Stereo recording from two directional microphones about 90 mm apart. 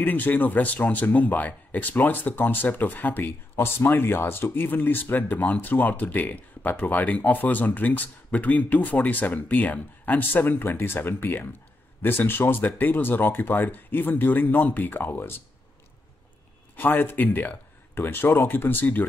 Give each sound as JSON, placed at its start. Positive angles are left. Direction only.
{"t": 0.0, "sound": "speech", "side_deg": 20}
{"t": 16.7, "sound": "speech", "side_deg": 20}